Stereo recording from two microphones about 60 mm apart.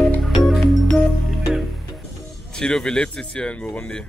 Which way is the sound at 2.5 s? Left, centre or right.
Centre.